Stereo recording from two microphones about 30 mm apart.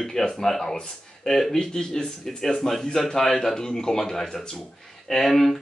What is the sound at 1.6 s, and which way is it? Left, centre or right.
Speech, left.